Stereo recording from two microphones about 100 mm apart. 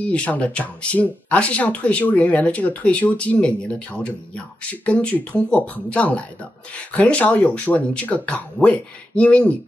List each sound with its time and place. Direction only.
0.0 s speech: 15° left (ahead or behind)